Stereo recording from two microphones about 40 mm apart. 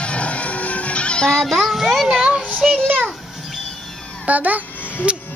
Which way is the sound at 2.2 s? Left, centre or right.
Centre.